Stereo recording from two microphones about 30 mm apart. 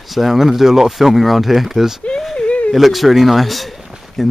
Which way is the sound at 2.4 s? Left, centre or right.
Left.